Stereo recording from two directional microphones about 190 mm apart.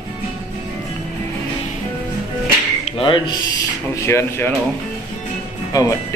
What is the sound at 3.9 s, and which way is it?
Speech, 15° left (ahead or behind).